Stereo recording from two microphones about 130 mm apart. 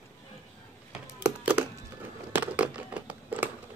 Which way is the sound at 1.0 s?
10° right (ahead or behind).